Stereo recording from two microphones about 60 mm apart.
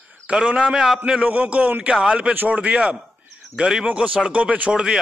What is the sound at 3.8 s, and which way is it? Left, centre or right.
Speech, right.